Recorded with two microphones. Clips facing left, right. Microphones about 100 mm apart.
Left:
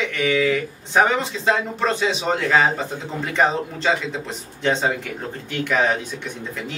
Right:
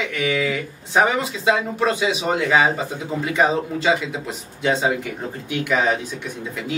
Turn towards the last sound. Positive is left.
turn(degrees=-5)  # may be behind; listen again after turning